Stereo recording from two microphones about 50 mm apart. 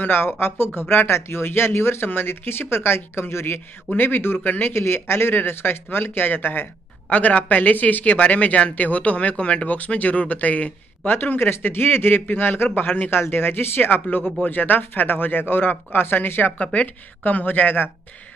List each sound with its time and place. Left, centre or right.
0.0 s speech: left
7.1 s speech: left
11.1 s a man's voice: left
16.6 s a man's voice: left